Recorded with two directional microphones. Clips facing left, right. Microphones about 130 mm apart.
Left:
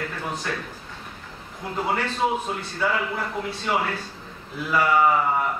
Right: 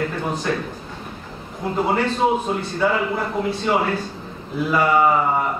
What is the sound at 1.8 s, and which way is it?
A man's voice, 25° right (ahead or behind).